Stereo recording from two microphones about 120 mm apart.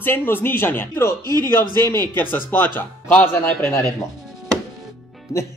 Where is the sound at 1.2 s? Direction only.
30° right (ahead or behind).